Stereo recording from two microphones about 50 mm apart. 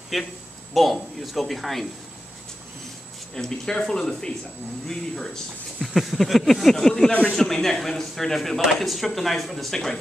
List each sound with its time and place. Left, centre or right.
0.1 s speech: centre
3.3 s a man's voice: centre
7.1 s speech: left
7.3 s a man's voice: centre